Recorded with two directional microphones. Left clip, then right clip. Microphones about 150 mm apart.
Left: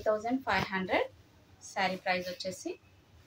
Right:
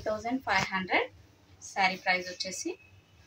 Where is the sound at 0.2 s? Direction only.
30° left (ahead or behind).